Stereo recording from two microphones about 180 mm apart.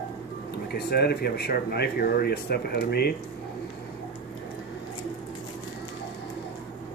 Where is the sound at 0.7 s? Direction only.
60° left (ahead or behind).